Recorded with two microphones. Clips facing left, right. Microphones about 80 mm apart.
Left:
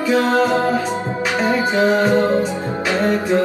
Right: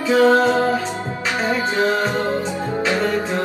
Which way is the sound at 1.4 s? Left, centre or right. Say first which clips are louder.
Left 3 dB; left.